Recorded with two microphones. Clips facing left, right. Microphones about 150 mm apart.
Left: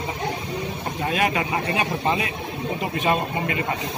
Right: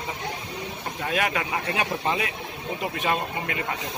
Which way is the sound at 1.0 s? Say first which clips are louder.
Left 3 dB; 25° left (ahead or behind).